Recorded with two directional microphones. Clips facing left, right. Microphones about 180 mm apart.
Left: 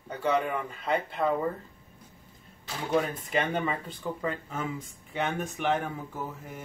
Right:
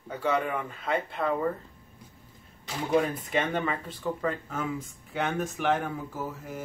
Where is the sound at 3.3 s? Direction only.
Centre (ahead or behind).